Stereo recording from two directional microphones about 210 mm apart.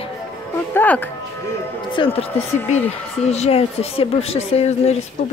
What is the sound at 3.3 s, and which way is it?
Speech, 30° left (ahead or behind).